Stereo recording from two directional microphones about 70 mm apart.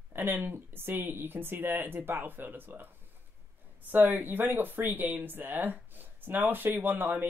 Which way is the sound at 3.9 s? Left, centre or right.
Right.